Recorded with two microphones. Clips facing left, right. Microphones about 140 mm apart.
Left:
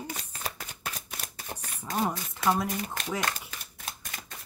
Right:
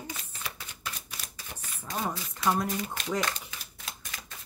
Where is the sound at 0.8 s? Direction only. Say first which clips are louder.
Left 2 dB; 50° left (ahead or behind).